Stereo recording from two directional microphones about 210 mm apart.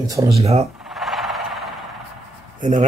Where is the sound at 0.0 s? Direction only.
15° right (ahead or behind).